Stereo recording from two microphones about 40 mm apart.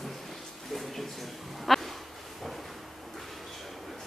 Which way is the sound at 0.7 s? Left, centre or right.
Centre.